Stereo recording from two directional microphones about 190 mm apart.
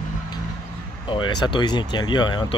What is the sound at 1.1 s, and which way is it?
Speech, 25° left (ahead or behind).